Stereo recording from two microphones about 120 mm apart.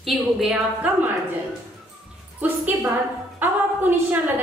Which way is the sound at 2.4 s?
15° right (ahead or behind).